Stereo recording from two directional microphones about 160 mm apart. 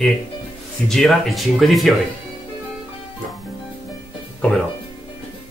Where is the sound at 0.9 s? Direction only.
Centre (ahead or behind).